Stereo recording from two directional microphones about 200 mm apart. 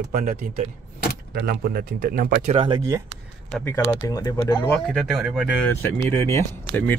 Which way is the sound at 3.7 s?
15° left (ahead or behind).